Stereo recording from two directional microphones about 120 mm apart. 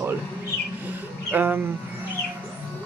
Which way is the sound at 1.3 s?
15° right (ahead or behind).